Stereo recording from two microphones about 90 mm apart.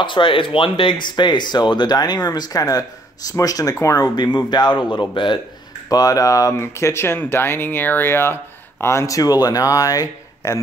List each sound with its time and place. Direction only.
0.0 s speech: 65° left (ahead or behind)
5.9 s speech: 40° left (ahead or behind)